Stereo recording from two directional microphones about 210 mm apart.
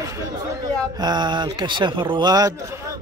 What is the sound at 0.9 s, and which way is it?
A man's voice, 20° right (ahead or behind).